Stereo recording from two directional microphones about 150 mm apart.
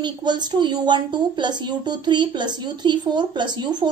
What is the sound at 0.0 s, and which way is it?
Speech, 30° right (ahead or behind).